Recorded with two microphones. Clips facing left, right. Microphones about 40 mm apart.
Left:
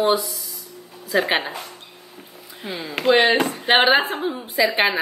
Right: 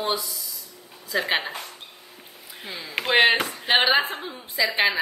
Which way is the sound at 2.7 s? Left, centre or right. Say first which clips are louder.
Left 6 dB; left.